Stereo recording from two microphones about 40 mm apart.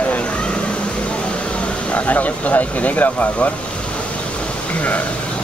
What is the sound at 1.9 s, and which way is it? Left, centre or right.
Speech, left.